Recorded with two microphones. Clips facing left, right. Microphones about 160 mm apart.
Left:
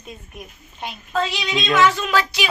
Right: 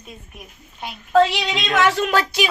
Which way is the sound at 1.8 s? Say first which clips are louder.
Right 1 dB; 70° right (ahead or behind).